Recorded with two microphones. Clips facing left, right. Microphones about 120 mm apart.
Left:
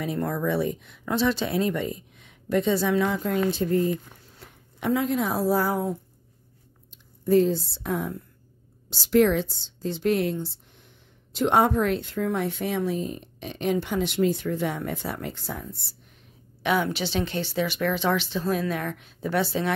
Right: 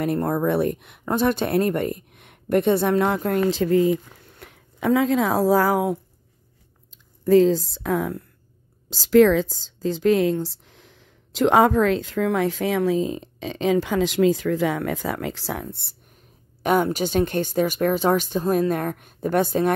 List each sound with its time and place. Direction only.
0.0 s a woman's voice: 50° right (ahead or behind)
3.4 s speech: 90° right
7.2 s speech: 90° right
10.3 s speech: 90° right; by 16.0 s 60° right (ahead or behind)
16.6 s speech: 45° right (ahead or behind)